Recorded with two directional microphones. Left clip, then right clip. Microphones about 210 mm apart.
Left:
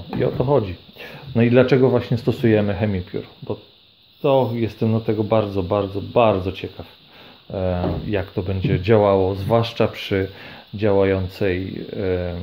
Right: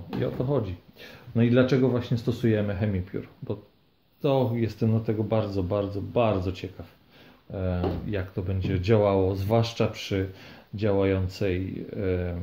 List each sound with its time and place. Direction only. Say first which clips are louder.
0.2 s speech: left 9 dB; 35° left (ahead or behind)
4.2 s speech: left 7 dB; 15° left (ahead or behind)
7.5 s speech: left 7 dB; 40° left (ahead or behind); by 12.4 s 20° left (ahead or behind)